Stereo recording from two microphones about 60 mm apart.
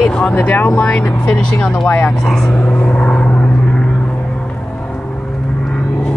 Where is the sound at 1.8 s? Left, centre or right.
Left.